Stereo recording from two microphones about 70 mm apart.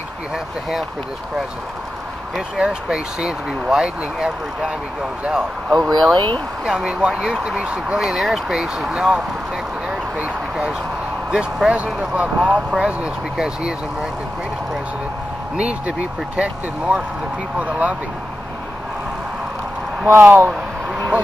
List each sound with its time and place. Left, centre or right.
2.6 s speech: centre
5.8 s speech: centre
6.1 s speech: right
6.6 s speech: centre
16.3 s speech: centre
20.1 s speech: right